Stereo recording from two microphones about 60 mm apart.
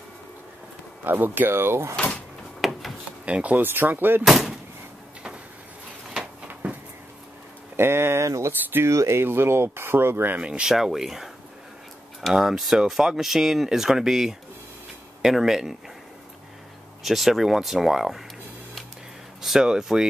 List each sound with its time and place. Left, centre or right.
1.0 s speech: right
2.6 s a sound: centre
3.3 s speech: right
3.6 s speech: right
6.4 s a sound: right
7.7 s speech: right
8.9 s speech: right
10.4 s speech: centre
12.4 s speech: centre
17.0 s speech: centre
19.4 s speech: centre